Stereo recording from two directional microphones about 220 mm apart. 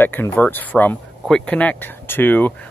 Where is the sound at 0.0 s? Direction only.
10° left (ahead or behind).